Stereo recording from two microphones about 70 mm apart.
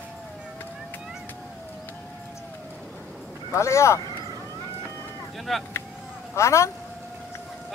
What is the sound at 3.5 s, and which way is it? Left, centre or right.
Speech, left.